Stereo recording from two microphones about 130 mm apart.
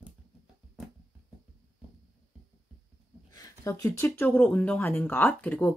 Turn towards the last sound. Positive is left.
turn(degrees=10)  # may be behind; listen again after turning